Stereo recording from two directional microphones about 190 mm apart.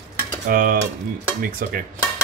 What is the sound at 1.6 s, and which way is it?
Speech, 45° right (ahead or behind).